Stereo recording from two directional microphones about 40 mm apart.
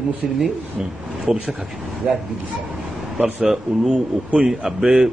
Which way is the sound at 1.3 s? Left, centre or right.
Centre.